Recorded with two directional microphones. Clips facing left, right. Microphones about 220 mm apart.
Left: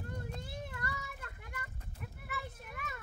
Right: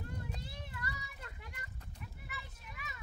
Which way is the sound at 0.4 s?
50° left (ahead or behind).